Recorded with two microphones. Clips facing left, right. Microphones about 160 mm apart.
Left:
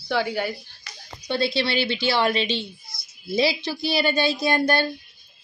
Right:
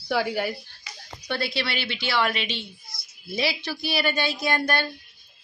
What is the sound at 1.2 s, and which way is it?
Speech, 20° left (ahead or behind).